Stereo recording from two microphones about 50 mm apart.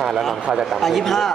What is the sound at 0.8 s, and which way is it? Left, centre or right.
Speech, centre.